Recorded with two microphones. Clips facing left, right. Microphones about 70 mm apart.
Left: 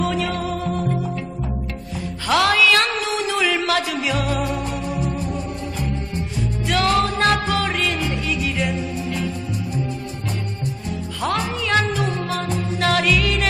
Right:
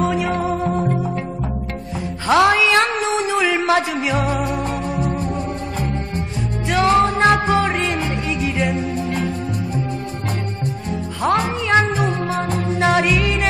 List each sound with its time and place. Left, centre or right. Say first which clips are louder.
0.0 s music: right 3 dB; right
2.2 s a sound: right 3 dB; right
4.8 s music: right 3 dB; right
6.7 s music: right 4 dB; right
8.9 s music: right 3 dB; right
11.1 s music: right 5 dB; right